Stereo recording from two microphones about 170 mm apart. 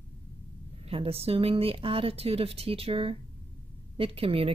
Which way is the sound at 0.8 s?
35° right (ahead or behind).